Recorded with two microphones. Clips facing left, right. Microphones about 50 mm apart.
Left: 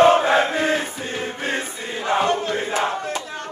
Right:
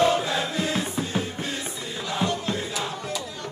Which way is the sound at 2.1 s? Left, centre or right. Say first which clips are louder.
Left 7 dB; left.